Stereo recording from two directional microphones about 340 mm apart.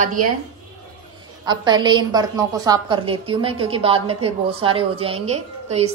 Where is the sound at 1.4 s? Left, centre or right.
Centre.